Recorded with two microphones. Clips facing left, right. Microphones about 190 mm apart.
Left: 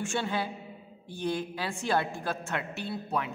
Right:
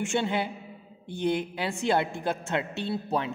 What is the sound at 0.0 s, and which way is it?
A man's voice, 20° right (ahead or behind).